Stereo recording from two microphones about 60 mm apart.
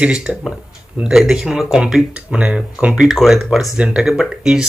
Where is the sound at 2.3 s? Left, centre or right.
Right.